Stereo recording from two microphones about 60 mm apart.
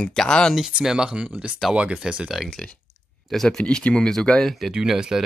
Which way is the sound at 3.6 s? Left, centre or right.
Centre.